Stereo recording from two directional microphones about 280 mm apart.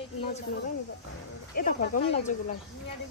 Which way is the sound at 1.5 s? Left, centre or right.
Left.